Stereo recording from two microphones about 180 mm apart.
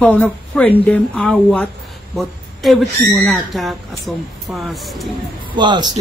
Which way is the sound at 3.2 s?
Centre (ahead or behind).